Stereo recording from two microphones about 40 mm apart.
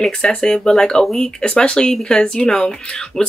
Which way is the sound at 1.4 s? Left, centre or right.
Left.